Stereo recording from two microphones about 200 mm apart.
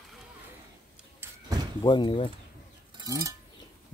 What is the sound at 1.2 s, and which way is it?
Door, 15° right (ahead or behind).